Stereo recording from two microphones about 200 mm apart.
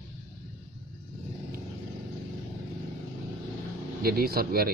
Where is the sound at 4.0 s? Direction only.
50° right (ahead or behind).